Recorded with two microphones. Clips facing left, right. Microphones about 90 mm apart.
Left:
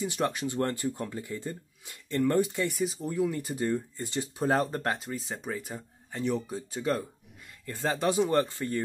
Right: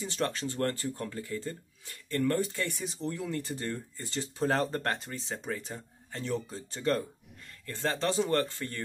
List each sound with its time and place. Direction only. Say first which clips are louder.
0.0 s speech: left 3 dB; 15° left (ahead or behind)
2.7 s speech: left 5 dB; 5° left (ahead or behind)